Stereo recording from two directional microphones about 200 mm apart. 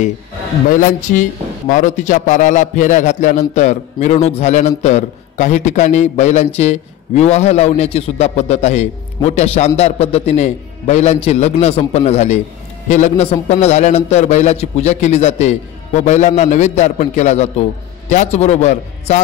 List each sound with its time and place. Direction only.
0.7 s a man's voice: 40° left (ahead or behind)